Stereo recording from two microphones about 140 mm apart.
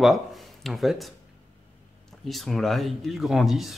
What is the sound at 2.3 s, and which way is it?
Speech, centre (ahead or behind).